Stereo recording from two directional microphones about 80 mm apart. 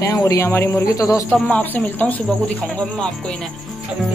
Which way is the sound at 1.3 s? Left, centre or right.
Left.